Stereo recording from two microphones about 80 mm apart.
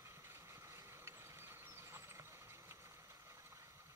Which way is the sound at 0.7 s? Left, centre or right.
Right.